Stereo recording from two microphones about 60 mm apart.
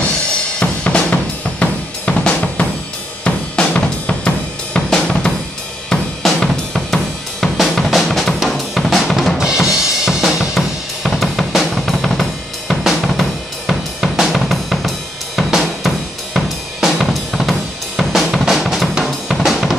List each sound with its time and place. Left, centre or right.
0.6 s drum kit: centre
11.1 s drum kit: centre